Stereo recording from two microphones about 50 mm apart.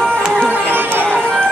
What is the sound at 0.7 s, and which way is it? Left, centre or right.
Music, right.